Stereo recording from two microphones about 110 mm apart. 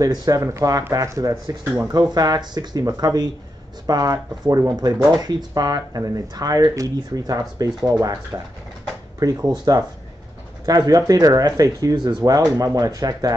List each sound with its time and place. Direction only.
0.0 s speech: 35° right (ahead or behind)
9.2 s speech: 35° right (ahead or behind)